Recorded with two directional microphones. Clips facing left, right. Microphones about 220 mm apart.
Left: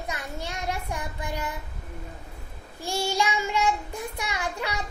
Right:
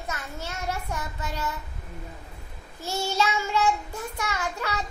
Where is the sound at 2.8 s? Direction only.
10° left (ahead or behind).